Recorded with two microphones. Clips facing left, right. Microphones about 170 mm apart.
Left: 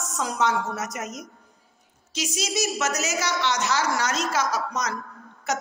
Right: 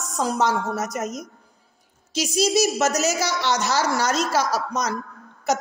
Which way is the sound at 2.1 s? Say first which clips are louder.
Right 8 dB; 35° right (ahead or behind).